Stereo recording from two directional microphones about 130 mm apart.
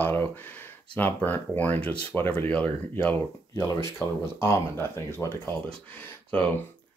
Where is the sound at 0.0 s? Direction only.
15° left (ahead or behind).